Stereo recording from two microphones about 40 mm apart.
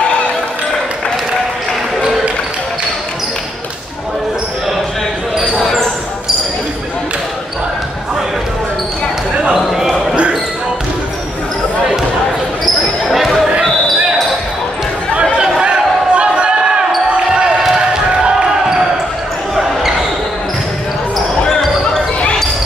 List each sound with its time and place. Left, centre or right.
5.6 s basketball bounce: centre
9.7 s basketball bounce: centre
13.1 s basketball bounce: centre
15.6 s basketball bounce: right